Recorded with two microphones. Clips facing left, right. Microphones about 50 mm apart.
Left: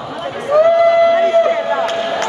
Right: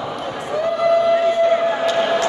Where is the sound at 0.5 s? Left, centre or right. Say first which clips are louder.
Left 7 dB; left.